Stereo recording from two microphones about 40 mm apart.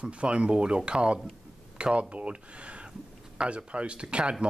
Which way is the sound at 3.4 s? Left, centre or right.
Right.